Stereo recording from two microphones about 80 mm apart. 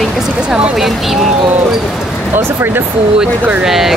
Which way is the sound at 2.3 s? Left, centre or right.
Right.